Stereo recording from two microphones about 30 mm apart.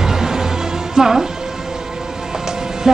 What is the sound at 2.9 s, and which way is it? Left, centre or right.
Music, centre.